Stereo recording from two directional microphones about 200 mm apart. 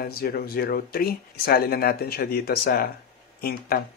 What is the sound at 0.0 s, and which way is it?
Speech, 50° left (ahead or behind).